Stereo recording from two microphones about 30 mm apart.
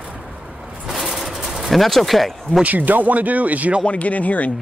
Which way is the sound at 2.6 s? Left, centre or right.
Right.